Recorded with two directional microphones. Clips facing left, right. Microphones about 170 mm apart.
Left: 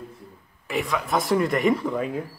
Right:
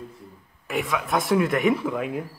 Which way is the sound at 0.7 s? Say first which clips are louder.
Even; centre (ahead or behind).